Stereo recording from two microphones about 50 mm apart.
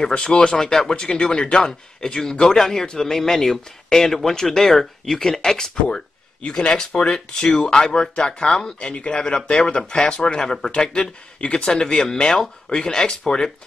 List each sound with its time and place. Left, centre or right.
0.2 s speech: centre